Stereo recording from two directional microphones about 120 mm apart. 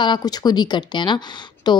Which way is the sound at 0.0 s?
35° left (ahead or behind).